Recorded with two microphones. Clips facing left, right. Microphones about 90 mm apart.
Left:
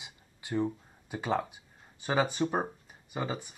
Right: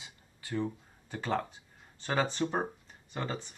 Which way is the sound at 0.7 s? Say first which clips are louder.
Left 3 dB; 10° left (ahead or behind).